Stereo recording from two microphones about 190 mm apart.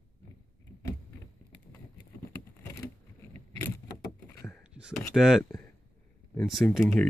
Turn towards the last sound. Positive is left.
turn(degrees=5)  # may be behind; listen again after turning